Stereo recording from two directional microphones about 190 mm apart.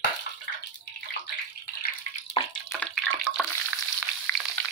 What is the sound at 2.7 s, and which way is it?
Frying, 5° left (ahead or behind).